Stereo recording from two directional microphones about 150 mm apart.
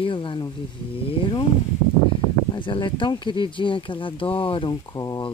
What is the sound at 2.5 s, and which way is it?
Speech, 35° left (ahead or behind).